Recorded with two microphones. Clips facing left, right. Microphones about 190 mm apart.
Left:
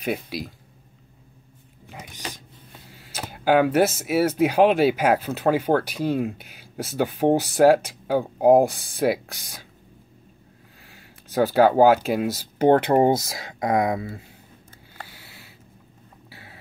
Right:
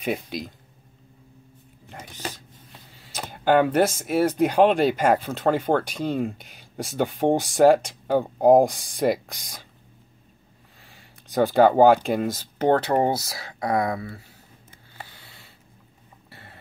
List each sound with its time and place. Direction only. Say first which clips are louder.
0.0 s speech: even; centre (ahead or behind)
3.0 s speech: even; centre (ahead or behind)
10.8 s speech: left 1 dB; centre (ahead or behind)
12.6 s speech: left 3 dB; 15° left (ahead or behind)
15.2 s a sound: left 3 dB; 5° left (ahead or behind)